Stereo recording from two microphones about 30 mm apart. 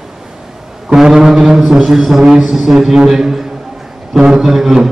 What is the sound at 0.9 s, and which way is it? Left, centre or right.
Foghorn, centre.